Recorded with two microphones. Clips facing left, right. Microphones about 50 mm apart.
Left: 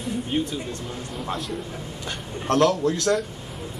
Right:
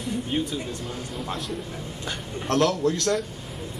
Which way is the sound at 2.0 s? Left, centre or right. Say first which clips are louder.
Left 2 dB; centre.